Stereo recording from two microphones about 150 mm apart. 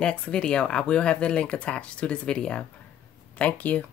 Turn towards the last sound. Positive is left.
turn(degrees=10)  # may be behind; listen again after turning